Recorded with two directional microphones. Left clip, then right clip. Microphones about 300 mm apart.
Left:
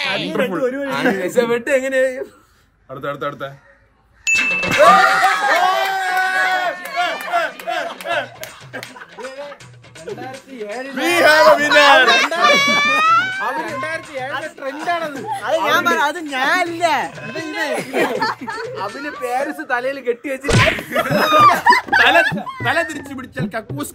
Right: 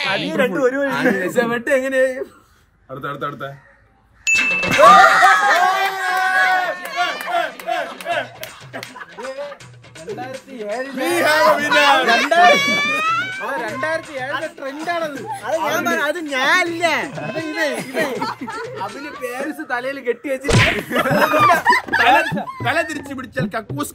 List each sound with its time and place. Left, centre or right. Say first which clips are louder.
0.0 s a man's voice: even; centre
0.4 s speech: right 4 dB; centre
0.9 s a man's voice: left 1 dB; centre
4.2 s a sound: even; centre
10.0 s speech: right 1 dB; centre
11.1 s speech: left 4 dB; left
13.3 s speech: left 2 dB; centre
17.9 s speech: left 3 dB; left
19.4 s speech: left 3 dB; centre
21.5 s a sound: left 2 dB; left
22.6 s speech: left 1 dB; centre